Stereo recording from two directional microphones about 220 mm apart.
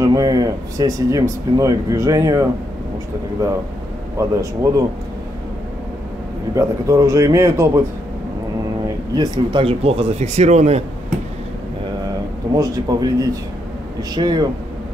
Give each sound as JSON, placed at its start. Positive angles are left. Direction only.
{"t": 0.0, "sound": "speech", "side_deg": -15}
{"t": 4.2, "sound": "speech", "side_deg": -15}
{"t": 6.5, "sound": "speech", "side_deg": -15}
{"t": 8.8, "sound": "speech", "side_deg": -20}
{"t": 12.5, "sound": "speech", "side_deg": -15}